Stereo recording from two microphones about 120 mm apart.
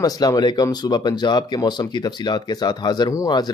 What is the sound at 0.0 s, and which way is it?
Speech, 30° left (ahead or behind).